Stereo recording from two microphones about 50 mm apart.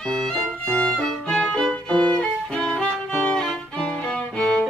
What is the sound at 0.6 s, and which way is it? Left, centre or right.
Violin, centre.